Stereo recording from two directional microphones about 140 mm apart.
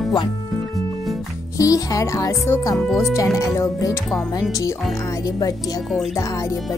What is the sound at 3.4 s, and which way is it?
Speech, 25° left (ahead or behind).